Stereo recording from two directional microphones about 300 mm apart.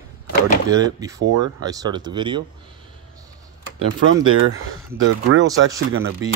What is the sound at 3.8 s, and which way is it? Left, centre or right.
Speech, right.